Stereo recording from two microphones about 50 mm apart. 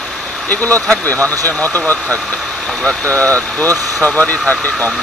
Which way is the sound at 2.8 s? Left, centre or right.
Left.